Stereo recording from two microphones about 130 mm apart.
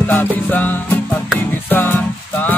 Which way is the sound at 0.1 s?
15° left (ahead or behind).